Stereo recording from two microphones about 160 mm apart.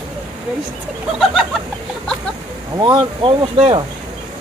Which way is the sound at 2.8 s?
30° right (ahead or behind).